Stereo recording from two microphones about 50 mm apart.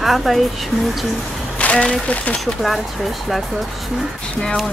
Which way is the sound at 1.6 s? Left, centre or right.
Left.